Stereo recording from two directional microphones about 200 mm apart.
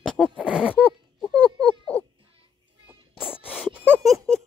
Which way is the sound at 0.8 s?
5° left (ahead or behind).